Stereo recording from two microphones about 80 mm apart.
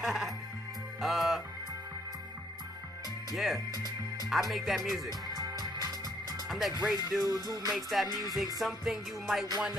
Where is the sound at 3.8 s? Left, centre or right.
Right.